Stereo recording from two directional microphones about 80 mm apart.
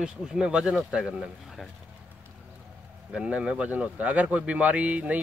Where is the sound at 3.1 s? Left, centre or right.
Centre.